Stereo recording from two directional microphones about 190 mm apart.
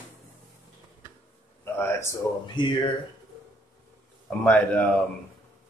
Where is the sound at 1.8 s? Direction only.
15° left (ahead or behind).